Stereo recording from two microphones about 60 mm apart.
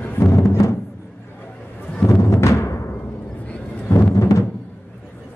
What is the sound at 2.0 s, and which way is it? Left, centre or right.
Music, left.